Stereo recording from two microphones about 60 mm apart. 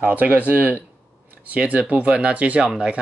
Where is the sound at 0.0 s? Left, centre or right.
Right.